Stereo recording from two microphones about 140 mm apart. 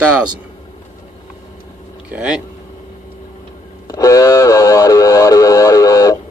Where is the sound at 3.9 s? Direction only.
25° left (ahead or behind).